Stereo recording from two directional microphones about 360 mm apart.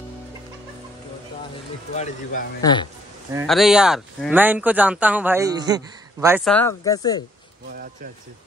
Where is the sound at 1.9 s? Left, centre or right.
Centre.